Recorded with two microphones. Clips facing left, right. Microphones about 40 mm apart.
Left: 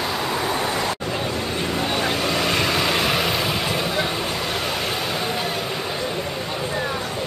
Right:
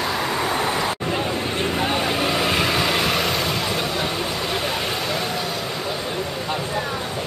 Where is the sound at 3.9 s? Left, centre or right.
Centre.